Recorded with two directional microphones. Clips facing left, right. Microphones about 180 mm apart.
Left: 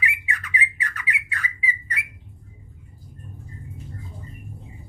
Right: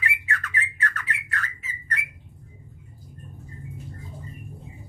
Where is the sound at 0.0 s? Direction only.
15° left (ahead or behind).